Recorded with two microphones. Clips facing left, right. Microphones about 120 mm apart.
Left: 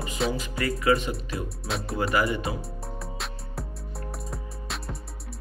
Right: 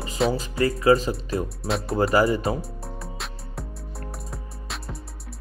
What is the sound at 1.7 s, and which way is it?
Speech, centre (ahead or behind).